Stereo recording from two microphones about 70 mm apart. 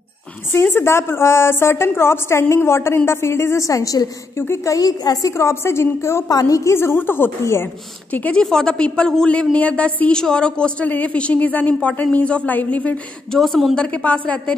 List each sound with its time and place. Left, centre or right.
0.5 s a woman's voice: left
4.4 s a woman's voice: left
4.7 s a woman's voice: left
5.5 s a woman's voice: left
6.2 s a woman's voice: left
6.7 s a woman's voice: left
8.1 s a woman's voice: left
8.4 s a woman's voice: centre
13.3 s a woman's voice: centre
13.7 s a woman's voice: centre